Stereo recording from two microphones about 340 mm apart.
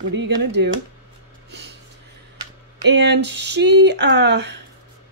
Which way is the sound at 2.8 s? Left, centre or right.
Right.